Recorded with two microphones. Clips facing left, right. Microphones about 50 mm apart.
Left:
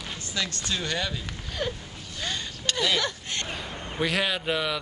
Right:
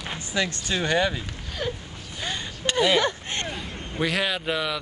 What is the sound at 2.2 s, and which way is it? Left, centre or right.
Speech, centre.